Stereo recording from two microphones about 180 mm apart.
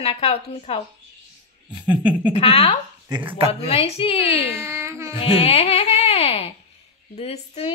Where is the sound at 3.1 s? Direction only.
25° right (ahead or behind).